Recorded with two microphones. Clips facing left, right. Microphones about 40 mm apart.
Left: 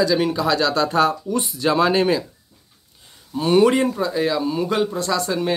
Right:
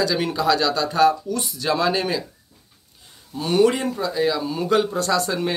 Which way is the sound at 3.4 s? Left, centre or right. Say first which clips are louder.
Left 3 dB; left.